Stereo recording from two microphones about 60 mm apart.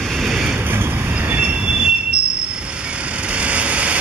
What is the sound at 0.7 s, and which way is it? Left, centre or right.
Vehicle, right.